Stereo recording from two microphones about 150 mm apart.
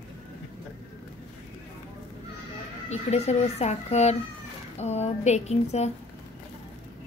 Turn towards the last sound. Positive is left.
turn(degrees=45)  # may be behind; listen again after turning